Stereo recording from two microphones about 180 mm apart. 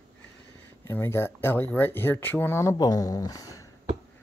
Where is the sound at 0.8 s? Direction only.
15° left (ahead or behind).